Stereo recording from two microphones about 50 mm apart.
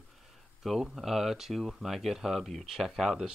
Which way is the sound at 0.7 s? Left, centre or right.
Centre.